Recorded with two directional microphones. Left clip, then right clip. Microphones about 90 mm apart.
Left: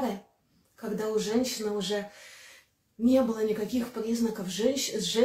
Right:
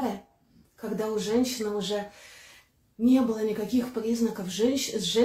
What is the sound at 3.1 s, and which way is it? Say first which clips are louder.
Speech: even; 40° left (ahead or behind).